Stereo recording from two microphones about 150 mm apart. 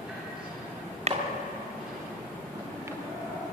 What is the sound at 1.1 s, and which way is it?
Tick-tock, 45° right (ahead or behind).